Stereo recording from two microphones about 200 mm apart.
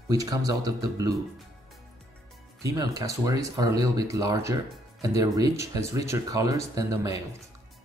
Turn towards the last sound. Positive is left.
turn(degrees=-15)  # may be behind; listen again after turning